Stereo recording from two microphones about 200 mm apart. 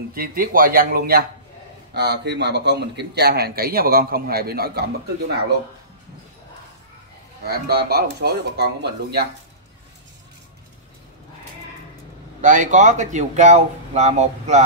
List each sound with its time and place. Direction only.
0.1 s a man's voice: 45° right (ahead or behind)
7.4 s a man's voice: 50° right (ahead or behind)
12.4 s speech: 40° right (ahead or behind)